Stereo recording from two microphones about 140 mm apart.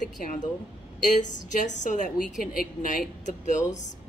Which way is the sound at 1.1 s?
60° left (ahead or behind).